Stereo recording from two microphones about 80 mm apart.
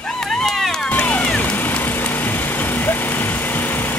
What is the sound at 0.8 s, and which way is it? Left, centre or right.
Vehicle, centre.